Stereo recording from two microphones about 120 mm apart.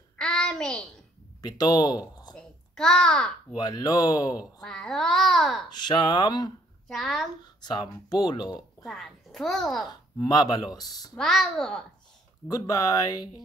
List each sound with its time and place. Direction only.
0.2 s child singing: 5° left (ahead or behind)
1.4 s speech: 35° left (ahead or behind)
2.3 s babbling: 5° left (ahead or behind)
3.5 s speech: 35° left (ahead or behind)
4.6 s a child's voice: 5° left (ahead or behind)
5.8 s speech: 40° left (ahead or behind)
6.9 s a child's voice: centre (ahead or behind)
7.4 s speech: 40° left (ahead or behind)
8.5 s a child's voice: centre (ahead or behind)
9.8 s speech: 35° left (ahead or behind)
11.1 s a child's voice: centre (ahead or behind)
12.4 s speech: 30° left (ahead or behind)